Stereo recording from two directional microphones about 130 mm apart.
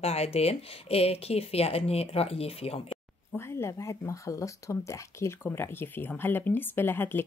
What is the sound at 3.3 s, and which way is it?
Speech, 20° left (ahead or behind).